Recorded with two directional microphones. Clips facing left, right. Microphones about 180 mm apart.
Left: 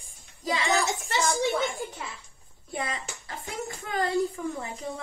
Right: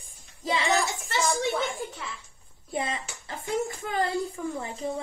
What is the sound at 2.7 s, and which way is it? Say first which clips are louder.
Speech: right 2 dB; 25° right (ahead or behind).